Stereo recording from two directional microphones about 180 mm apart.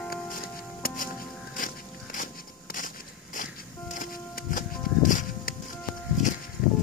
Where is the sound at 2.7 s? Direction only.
50° left (ahead or behind).